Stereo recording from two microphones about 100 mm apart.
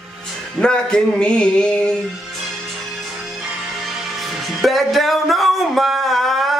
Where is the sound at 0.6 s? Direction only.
10° left (ahead or behind).